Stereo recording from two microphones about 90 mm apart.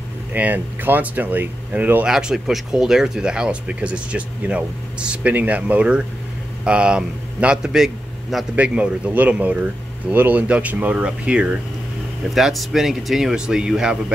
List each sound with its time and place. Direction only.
0.3 s speech: 20° right (ahead or behind)
2.0 s a man's voice: 5° right (ahead or behind)
8.5 s speech: 15° right (ahead or behind)